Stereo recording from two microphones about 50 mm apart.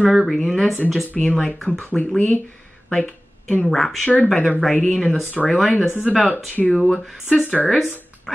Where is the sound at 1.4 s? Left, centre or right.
Left.